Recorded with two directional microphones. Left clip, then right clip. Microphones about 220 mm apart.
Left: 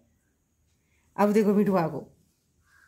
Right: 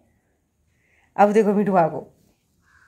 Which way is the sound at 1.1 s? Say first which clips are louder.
Right 7 dB; 15° left (ahead or behind).